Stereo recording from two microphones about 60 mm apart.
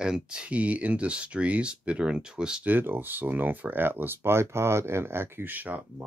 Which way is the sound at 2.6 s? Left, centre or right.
Right.